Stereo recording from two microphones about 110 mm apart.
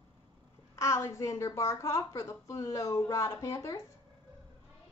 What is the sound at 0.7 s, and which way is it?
A child's voice, 25° left (ahead or behind).